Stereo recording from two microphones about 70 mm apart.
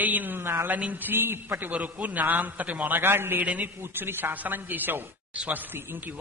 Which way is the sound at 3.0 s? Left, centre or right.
Right.